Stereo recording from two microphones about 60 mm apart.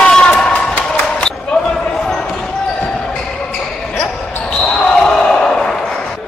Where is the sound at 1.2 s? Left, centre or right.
Centre.